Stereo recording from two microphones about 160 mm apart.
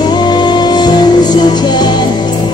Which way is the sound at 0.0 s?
25° left (ahead or behind).